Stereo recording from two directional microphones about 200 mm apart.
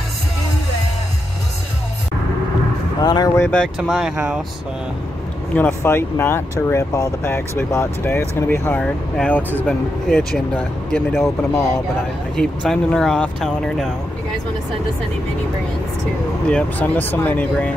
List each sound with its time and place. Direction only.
3.0 s speech: 20° left (ahead or behind)
3.4 s speech: 5° left (ahead or behind)
5.6 s speech: 10° left (ahead or behind)
16.4 s speech: 5° left (ahead or behind)